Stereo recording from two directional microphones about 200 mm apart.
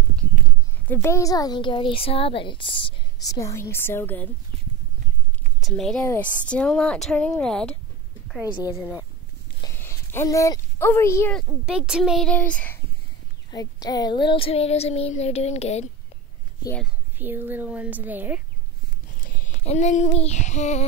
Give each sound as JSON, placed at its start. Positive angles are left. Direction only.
{"t": 0.8, "sound": "a woman's voice", "side_deg": 10}
{"t": 5.6, "sound": "a woman's voice", "side_deg": 0}
{"t": 8.3, "sound": "a woman's voice", "side_deg": -5}
{"t": 9.6, "sound": "a sound", "side_deg": 15}
{"t": 11.6, "sound": "a woman's voice", "side_deg": -5}
{"t": 13.5, "sound": "child singing", "side_deg": 20}
{"t": 16.8, "sound": "a woman's voice", "side_deg": -10}
{"t": 19.6, "sound": "child singing", "side_deg": 35}